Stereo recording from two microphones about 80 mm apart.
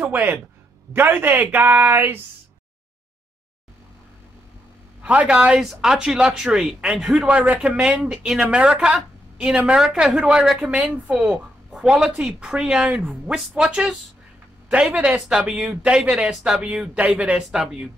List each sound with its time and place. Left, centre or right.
0.1 s speech: right
5.0 s a woman's voice: centre
10.7 s a woman's voice: centre